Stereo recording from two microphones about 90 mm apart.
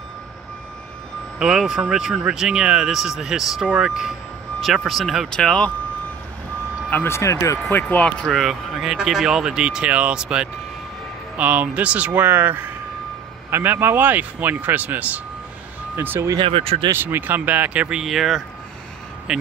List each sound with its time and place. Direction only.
1.4 s speech: 5° right (ahead or behind)
5.3 s speech: 10° left (ahead or behind)
6.9 s speech: 25° left (ahead or behind)
7.7 s speech: 15° left (ahead or behind)
8.3 s speech: centre (ahead or behind); by 16.3 s 25° right (ahead or behind)
16.3 s speech: 90° right
16.9 s speech: 25° right (ahead or behind); by 19.4 s 10° right (ahead or behind)